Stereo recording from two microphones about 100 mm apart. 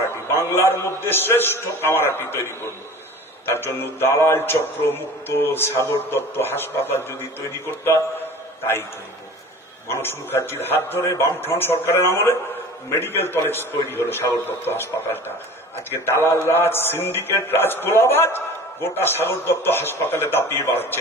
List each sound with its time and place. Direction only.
0.4 s a man's voice: 25° left (ahead or behind)
9.8 s a man's voice: 25° left (ahead or behind)